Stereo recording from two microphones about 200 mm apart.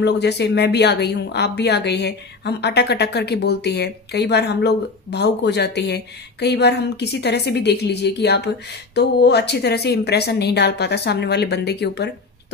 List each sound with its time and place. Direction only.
0.0 s speech: 55° left (ahead or behind)